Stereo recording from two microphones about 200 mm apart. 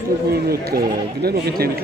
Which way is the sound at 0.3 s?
50° right (ahead or behind).